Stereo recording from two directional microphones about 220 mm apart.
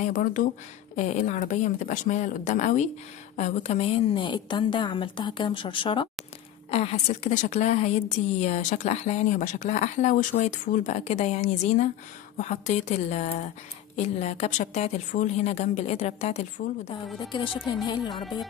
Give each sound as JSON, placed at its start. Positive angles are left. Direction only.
{"t": 0.0, "sound": "a woman's voice", "side_deg": 35}
{"t": 17.8, "sound": "music", "side_deg": 20}
{"t": 18.1, "sound": "music", "side_deg": 0}